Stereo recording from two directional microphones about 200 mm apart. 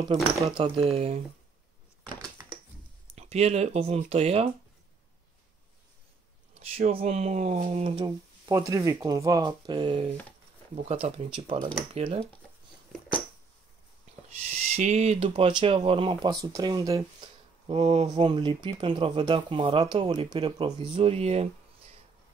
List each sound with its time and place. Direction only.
0.4 s speech: 20° right (ahead or behind)
0.7 s speech: 30° right (ahead or behind)
3.2 s speech: 30° right (ahead or behind)
6.5 s speech: 30° right (ahead or behind)
8.5 s speech: 15° right (ahead or behind)
14.5 s speech: 35° right (ahead or behind)